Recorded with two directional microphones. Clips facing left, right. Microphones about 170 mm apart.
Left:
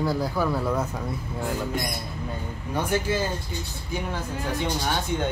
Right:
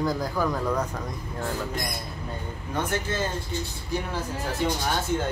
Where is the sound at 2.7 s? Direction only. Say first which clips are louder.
Left 3 dB; 10° left (ahead or behind).